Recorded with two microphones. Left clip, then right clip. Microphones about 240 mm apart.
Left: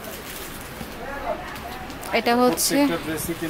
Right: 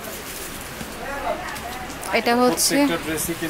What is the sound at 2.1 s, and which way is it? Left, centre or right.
Speech, centre.